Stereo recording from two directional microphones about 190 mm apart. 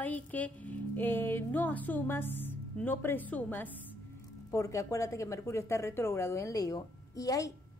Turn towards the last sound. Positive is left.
turn(degrees=20)  # may be behind; listen again after turning